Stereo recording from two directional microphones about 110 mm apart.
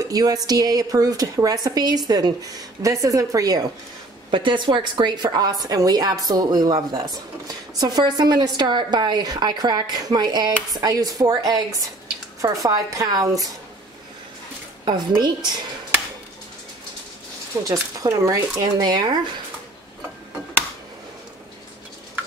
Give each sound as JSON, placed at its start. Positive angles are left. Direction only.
{"t": 0.0, "sound": "a woman's voice", "side_deg": -35}
{"t": 4.3, "sound": "a woman's voice", "side_deg": -45}
{"t": 14.9, "sound": "a woman's voice", "side_deg": -40}
{"t": 17.6, "sound": "a woman's voice", "side_deg": -30}